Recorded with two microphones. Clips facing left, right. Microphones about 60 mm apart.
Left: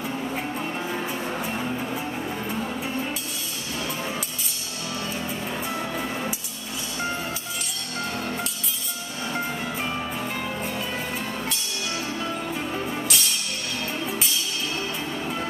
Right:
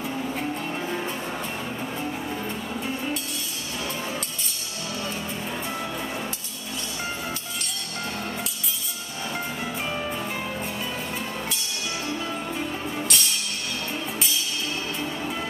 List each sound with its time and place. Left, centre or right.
0.9 s music: centre
5.7 s music: centre
9.8 s music: centre
12.3 s music: centre